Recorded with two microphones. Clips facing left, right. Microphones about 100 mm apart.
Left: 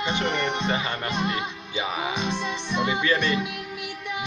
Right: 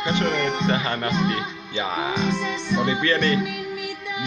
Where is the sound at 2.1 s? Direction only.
20° left (ahead or behind).